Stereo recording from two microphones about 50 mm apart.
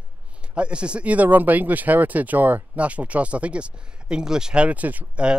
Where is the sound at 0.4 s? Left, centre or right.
Right.